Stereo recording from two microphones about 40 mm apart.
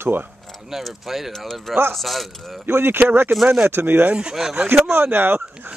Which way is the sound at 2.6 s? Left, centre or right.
Right.